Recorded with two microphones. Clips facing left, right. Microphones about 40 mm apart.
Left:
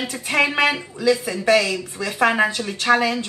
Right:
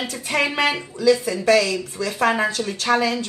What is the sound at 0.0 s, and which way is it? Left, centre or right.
Speech, centre.